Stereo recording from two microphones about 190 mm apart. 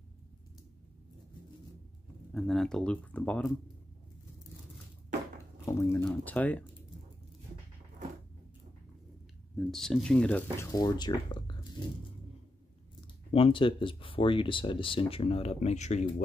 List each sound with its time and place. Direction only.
2.3 s speech: centre (ahead or behind)
5.7 s speech: 15° left (ahead or behind)
9.6 s speech: centre (ahead or behind)
10.7 s speech: 20° left (ahead or behind)
13.0 s speech: 30° left (ahead or behind)